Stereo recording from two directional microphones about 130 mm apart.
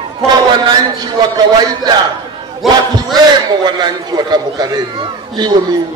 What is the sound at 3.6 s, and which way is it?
A man's voice, 35° right (ahead or behind).